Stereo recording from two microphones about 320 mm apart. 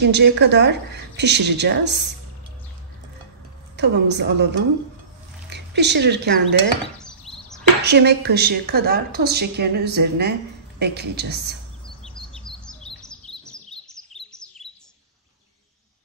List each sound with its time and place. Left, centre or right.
0.0 s a woman's voice: right
3.7 s a woman's voice: right
7.0 s chop: centre
7.8 s a woman's voice: right
12.4 s chirp: centre